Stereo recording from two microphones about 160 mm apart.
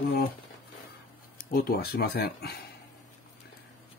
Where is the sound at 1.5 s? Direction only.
70° left (ahead or behind); by 2.5 s 90° left.